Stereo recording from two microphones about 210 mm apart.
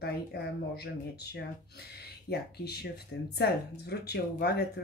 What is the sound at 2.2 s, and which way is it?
Speech, 50° left (ahead or behind).